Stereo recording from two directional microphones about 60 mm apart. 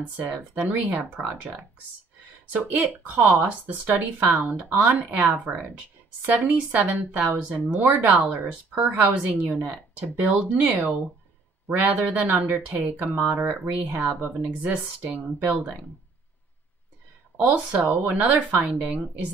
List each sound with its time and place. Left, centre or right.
0.0 s speech: right
17.4 s speech: right